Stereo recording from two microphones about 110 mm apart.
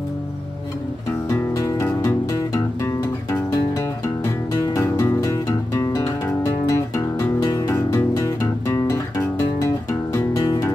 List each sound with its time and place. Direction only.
1.3 s music: 25° left (ahead or behind)
8.6 s guitar: 20° left (ahead or behind)
10.1 s music: 35° left (ahead or behind)